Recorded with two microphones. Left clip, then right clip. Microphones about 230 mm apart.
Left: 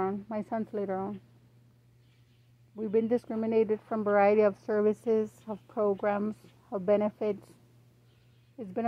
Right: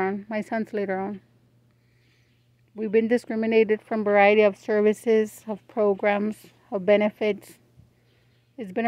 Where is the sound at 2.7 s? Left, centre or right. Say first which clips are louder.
Right 6 dB; right.